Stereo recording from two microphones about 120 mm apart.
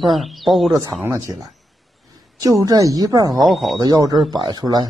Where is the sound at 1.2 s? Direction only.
30° right (ahead or behind).